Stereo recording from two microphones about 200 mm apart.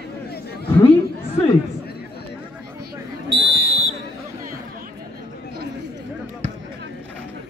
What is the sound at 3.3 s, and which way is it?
Buzzer, 55° right (ahead or behind).